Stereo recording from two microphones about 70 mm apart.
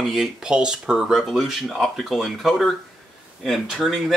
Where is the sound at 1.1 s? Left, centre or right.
Centre.